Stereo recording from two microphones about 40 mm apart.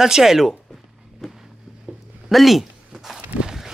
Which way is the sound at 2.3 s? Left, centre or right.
Centre.